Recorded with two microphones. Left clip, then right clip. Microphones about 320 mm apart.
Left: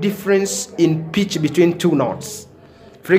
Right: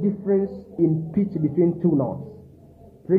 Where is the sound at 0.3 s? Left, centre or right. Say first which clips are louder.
Left 6 dB; centre.